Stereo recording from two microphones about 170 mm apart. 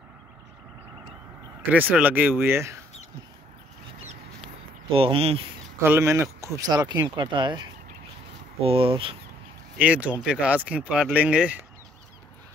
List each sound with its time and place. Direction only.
1.7 s speech: 10° right (ahead or behind)
4.8 s speech: 35° right (ahead or behind)
5.8 s speech: 15° right (ahead or behind); by 9.1 s 30° right (ahead or behind)
9.8 s speech: 10° right (ahead or behind)